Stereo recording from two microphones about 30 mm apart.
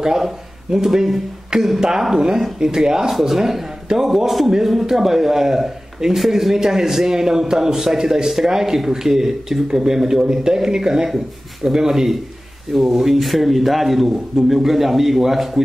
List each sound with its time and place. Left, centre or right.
0.0 s a man's voice: centre
3.1 s a man's voice: centre